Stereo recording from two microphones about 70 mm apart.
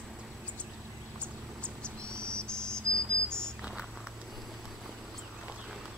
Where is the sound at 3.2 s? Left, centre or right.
Centre.